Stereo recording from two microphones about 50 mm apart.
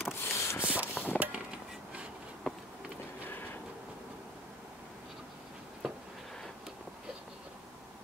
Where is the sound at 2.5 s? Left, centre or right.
Centre.